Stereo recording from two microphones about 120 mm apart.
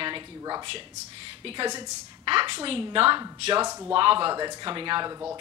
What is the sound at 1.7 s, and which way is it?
A woman's voice, 40° right (ahead or behind).